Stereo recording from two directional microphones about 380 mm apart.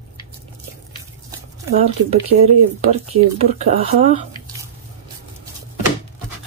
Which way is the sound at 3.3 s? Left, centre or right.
Centre.